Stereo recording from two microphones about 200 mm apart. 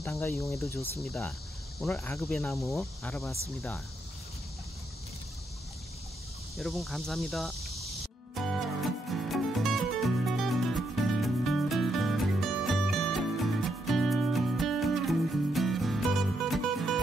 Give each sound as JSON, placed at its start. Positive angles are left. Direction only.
{"t": 0.0, "sound": "cricket", "side_deg": 15}
{"t": 1.0, "sound": "cricket", "side_deg": 0}
{"t": 2.0, "sound": "cricket", "side_deg": 15}
{"t": 2.2, "sound": "cricket", "side_deg": 0}
{"t": 6.5, "sound": "cricket", "side_deg": 0}
{"t": 8.4, "sound": "music", "side_deg": 0}